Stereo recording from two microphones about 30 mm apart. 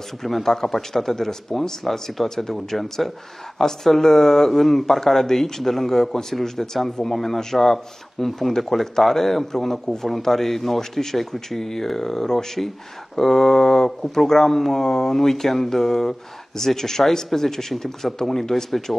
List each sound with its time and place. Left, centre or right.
0.2 s speech: centre
2.5 s speech: centre
10.8 s speech: centre